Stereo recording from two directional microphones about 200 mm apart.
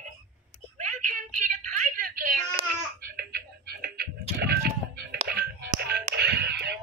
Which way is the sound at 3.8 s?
50° right (ahead or behind).